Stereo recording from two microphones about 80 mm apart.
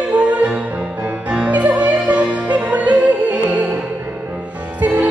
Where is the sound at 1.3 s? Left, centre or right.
Centre.